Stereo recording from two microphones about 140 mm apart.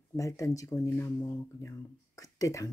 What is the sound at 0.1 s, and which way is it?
Speech, 20° left (ahead or behind).